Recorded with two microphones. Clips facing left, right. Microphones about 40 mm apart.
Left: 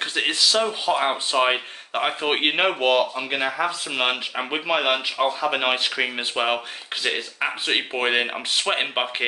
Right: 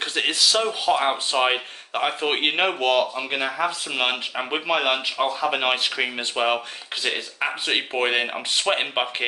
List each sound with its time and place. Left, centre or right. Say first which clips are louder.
0.0 s speech: even; centre